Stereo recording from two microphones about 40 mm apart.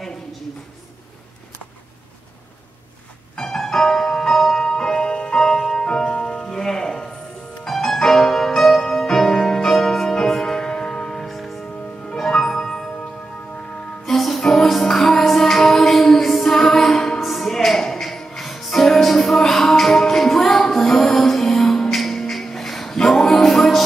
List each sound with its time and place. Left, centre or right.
3.3 s music: centre
6.3 s music: centre
11.2 s music: centre
14.0 s music: centre
17.2 s music: centre